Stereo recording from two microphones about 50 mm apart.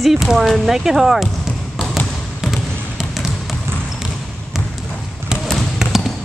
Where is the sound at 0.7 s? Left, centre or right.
Centre.